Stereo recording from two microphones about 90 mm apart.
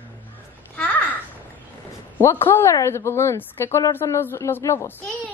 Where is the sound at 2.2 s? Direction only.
30° left (ahead or behind).